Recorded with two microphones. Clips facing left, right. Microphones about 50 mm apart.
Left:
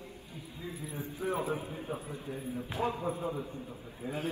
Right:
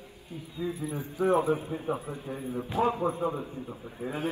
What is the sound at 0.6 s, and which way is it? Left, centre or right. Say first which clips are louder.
A man's voice: right 8 dB; right.